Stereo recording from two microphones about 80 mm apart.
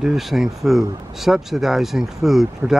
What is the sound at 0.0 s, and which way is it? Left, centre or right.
Speech, centre.